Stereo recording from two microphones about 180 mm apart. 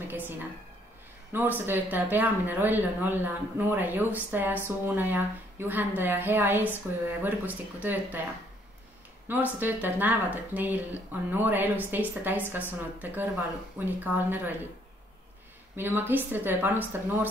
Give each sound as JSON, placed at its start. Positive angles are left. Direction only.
{"t": 0.1, "sound": "a sound", "side_deg": -10}
{"t": 1.3, "sound": "speech", "side_deg": -10}
{"t": 9.3, "sound": "speech", "side_deg": -10}
{"t": 15.7, "sound": "speech", "side_deg": -10}